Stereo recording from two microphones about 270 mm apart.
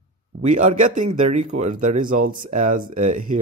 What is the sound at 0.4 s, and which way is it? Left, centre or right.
Speech, right.